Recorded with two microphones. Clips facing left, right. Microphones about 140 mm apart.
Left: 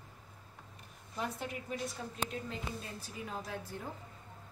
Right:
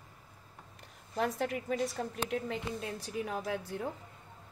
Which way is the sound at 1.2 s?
90° right.